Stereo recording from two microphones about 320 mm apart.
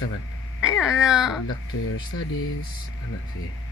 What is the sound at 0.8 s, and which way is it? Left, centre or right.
Speech, centre.